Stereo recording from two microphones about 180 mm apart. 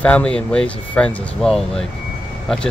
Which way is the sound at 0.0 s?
5° left (ahead or behind).